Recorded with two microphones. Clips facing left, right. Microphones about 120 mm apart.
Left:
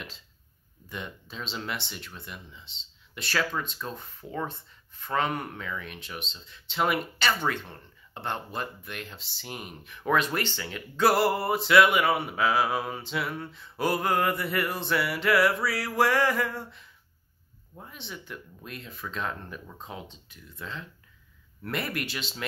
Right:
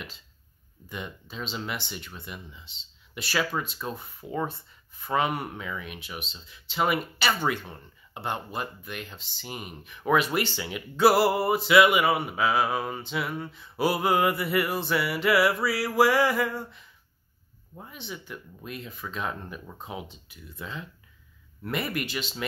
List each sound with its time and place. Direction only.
0.8 s speech: 5° right (ahead or behind)